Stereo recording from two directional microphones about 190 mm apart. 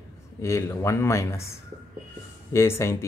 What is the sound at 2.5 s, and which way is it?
Speech, 15° left (ahead or behind).